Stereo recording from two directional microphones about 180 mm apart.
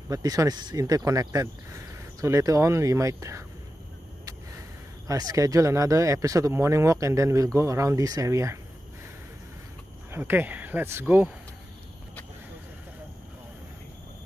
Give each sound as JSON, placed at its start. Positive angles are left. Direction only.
{"t": 0.1, "sound": "speech", "side_deg": -20}
{"t": 5.0, "sound": "speech", "side_deg": -20}
{"t": 10.1, "sound": "speech", "side_deg": -10}